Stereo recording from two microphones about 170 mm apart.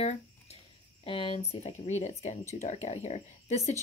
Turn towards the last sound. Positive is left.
turn(degrees=40)  # may be behind; listen again after turning